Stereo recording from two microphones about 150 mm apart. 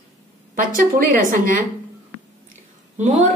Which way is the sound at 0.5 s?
65° right (ahead or behind).